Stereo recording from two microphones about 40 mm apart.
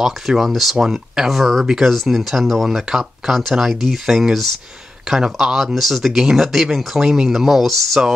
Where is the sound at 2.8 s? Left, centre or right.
Centre.